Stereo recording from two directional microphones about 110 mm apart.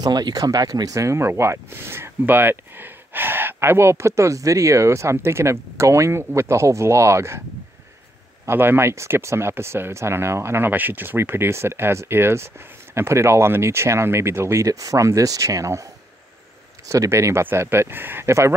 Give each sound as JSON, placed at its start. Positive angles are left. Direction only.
{"t": 0.0, "sound": "speech", "side_deg": -40}
{"t": 8.5, "sound": "speech", "side_deg": -20}